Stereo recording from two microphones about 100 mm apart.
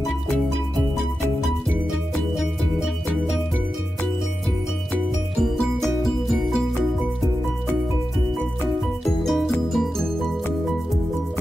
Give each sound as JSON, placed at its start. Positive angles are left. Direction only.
{"t": 5.4, "sound": "music", "side_deg": 0}
{"t": 9.0, "sound": "music", "side_deg": 0}